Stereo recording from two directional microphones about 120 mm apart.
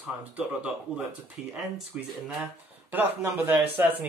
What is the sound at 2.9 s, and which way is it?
Speech, 15° right (ahead or behind).